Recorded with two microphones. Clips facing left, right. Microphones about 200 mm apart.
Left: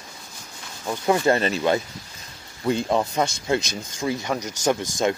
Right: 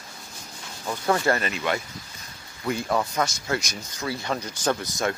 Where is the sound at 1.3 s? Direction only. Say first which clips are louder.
Left 6 dB; 30° left (ahead or behind); by 4.8 s 15° left (ahead or behind).